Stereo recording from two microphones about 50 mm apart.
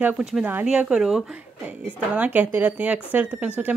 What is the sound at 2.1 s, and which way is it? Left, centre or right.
Speech, right.